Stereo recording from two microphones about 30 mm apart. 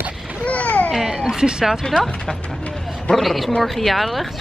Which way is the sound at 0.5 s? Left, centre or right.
Left.